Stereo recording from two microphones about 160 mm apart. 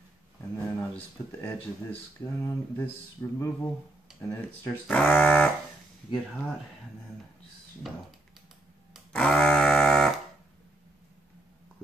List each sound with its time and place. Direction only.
0.6 s speech: 10° left (ahead or behind)
7.8 s speech: centre (ahead or behind)
8.9 s a sound: 5° left (ahead or behind)